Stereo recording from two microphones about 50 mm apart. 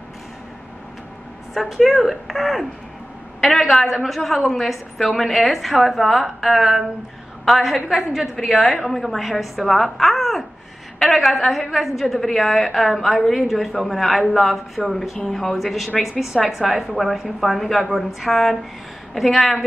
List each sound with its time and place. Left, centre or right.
1.5 s a woman's voice: centre